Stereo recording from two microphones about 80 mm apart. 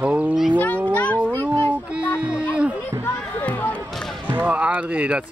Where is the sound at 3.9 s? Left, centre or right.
Centre.